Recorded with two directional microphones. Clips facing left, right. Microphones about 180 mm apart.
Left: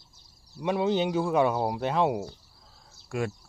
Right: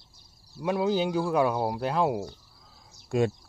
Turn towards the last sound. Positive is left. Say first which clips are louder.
# right 6 dB
turn(degrees=-20)  # may be behind; listen again after turning